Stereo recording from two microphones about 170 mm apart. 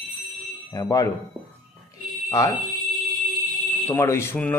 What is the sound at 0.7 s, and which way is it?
Speech, 20° left (ahead or behind).